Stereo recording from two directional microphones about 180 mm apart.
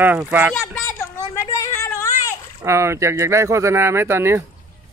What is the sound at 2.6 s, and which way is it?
Speech, 15° right (ahead or behind).